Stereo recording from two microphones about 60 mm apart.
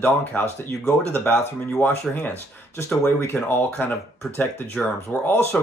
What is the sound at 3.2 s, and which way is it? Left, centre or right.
Speech, left.